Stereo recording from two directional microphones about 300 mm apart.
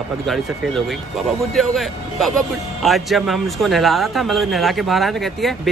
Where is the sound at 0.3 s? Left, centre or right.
Centre.